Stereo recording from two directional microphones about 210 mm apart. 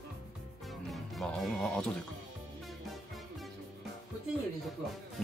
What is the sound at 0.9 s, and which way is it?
Speech, centre (ahead or behind).